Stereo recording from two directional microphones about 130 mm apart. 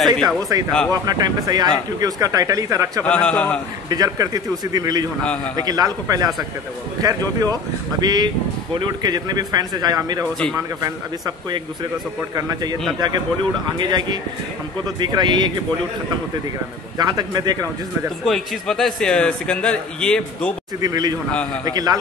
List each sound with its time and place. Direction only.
0.0 s speech: centre (ahead or behind)
1.0 s speech: 30° right (ahead or behind)
3.0 s a man's voice: 10° left (ahead or behind)
3.9 s speech: 30° right (ahead or behind)
5.2 s a man's voice: 10° left (ahead or behind)
5.6 s speech: 30° right (ahead or behind)
13.7 s speech: 35° right (ahead or behind)
17.0 s speech: 30° right (ahead or behind)
18.2 s a man's voice: centre (ahead or behind)
20.8 s speech: 30° right (ahead or behind)